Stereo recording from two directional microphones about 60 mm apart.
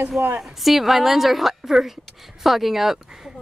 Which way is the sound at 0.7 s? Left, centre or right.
Centre.